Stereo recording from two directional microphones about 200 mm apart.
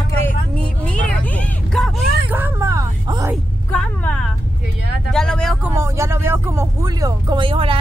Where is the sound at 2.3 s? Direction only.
10° right (ahead or behind).